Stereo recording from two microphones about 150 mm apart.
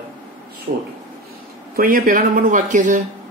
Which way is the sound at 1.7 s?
70° right (ahead or behind).